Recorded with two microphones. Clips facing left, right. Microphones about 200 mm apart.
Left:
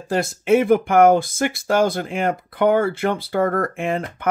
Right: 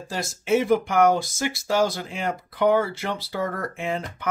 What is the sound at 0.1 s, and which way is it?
Speech, 55° left (ahead or behind).